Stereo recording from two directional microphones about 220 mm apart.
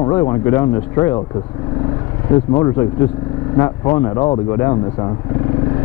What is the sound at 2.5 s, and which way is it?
Speech, 15° left (ahead or behind).